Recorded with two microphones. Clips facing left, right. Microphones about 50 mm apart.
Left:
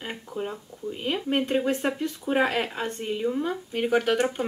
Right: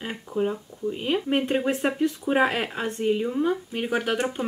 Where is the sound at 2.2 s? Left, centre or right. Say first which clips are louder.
Left 1 dB; centre.